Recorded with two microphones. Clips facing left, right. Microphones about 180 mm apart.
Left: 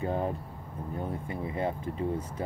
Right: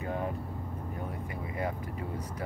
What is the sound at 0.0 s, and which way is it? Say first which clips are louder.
Vehicle: left 4 dB; 30° left (ahead or behind).